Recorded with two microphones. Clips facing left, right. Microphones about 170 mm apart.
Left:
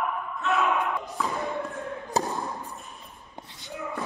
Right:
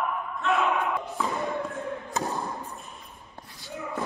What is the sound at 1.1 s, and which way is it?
Thump, centre (ahead or behind).